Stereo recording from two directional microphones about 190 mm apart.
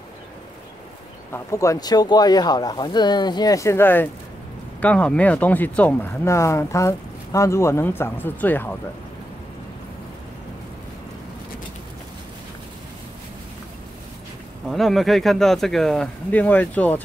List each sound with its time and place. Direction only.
1.3 s speech: 15° left (ahead or behind)
14.7 s speech: centre (ahead or behind)